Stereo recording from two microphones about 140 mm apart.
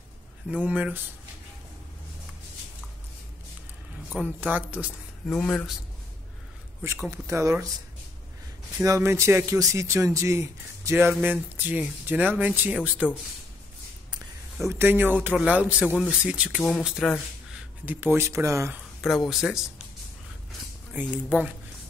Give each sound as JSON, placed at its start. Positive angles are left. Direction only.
{"t": 0.5, "sound": "speech", "side_deg": -10}
{"t": 4.1, "sound": "speech", "side_deg": -10}
{"t": 5.2, "sound": "speech", "side_deg": 10}
{"t": 6.8, "sound": "speech", "side_deg": -15}
{"t": 8.8, "sound": "speech", "side_deg": -20}
{"t": 14.7, "sound": "speech", "side_deg": -15}
{"t": 17.5, "sound": "speech", "side_deg": -15}
{"t": 18.9, "sound": "speech", "side_deg": 0}